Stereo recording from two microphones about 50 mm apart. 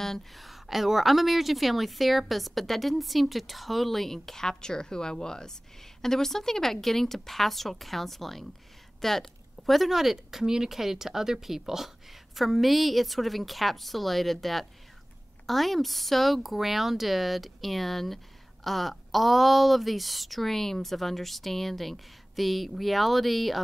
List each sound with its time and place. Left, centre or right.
0.0 s speech: centre